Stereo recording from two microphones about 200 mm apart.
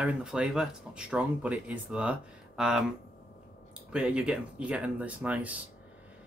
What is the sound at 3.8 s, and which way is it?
Speech, 5° right (ahead or behind).